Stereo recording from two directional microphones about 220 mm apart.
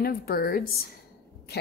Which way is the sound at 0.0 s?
45° left (ahead or behind).